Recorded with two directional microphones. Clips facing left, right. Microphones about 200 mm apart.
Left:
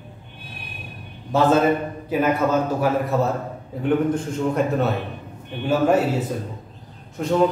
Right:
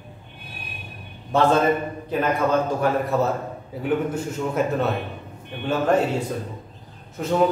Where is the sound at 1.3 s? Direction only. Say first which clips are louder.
Left 1 dB; centre (ahead or behind).